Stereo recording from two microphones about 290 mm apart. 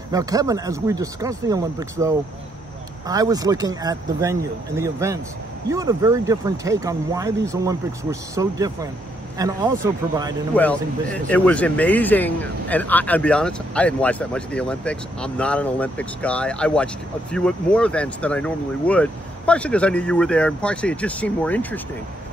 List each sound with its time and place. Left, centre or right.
0.1 s speech: centre
10.5 s speech: centre